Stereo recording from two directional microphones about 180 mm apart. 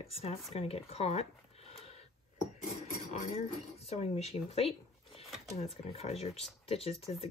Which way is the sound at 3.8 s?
35° left (ahead or behind).